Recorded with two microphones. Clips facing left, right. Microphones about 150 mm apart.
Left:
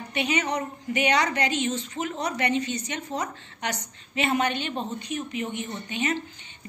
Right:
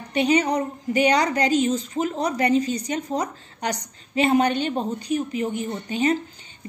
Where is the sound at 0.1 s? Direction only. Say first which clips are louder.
Right 7 dB; 35° right (ahead or behind).